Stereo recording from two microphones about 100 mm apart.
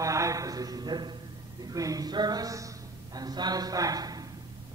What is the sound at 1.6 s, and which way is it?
A woman's voice, 35° right (ahead or behind).